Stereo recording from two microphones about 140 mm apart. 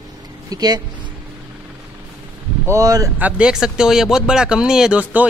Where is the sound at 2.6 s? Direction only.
20° right (ahead or behind).